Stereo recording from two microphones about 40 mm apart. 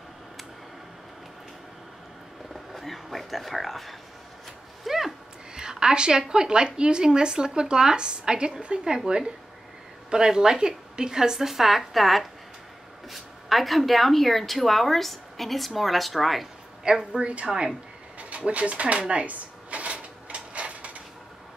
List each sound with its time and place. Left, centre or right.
2.5 s speech: centre
4.8 s a sound: centre
5.5 s a woman's voice: centre
16.8 s a woman's voice: centre
17.2 s a woman's voice: right
18.3 s a sound: right